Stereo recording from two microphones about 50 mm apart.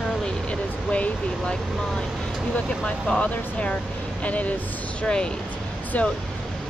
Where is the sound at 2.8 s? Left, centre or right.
Left.